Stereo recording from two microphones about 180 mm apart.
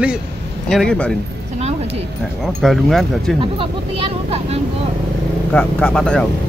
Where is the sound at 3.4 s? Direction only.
30° right (ahead or behind).